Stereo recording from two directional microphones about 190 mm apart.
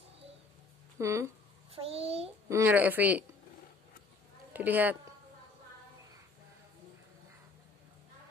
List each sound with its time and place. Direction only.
0.9 s speech: 15° right (ahead or behind)
1.8 s a child's voice: 30° right (ahead or behind)
2.5 s speech: 10° right (ahead or behind)
4.5 s a woman's voice: 10° right (ahead or behind)